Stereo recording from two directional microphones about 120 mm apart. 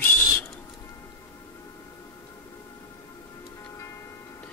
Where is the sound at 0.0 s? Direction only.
20° left (ahead or behind).